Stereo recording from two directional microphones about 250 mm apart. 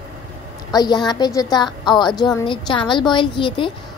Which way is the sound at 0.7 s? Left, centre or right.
Centre.